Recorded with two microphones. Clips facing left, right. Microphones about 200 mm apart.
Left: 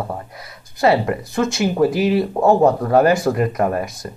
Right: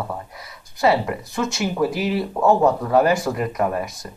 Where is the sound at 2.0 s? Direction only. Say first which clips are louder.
Left 5 dB; 30° left (ahead or behind).